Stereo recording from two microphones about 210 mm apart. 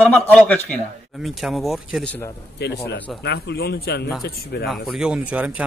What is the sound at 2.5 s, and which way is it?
A man's voice, 50° left (ahead or behind).